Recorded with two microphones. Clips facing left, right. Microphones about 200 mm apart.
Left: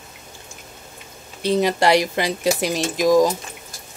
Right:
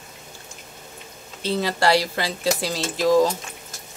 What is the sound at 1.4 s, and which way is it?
Speech, 15° left (ahead or behind).